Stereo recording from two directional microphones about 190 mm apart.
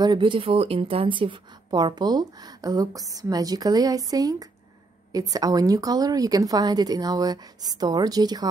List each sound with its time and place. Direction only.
0.0 s speech: 25° right (ahead or behind)